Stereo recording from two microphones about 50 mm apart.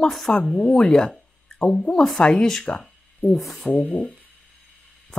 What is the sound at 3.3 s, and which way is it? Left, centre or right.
Speech, centre.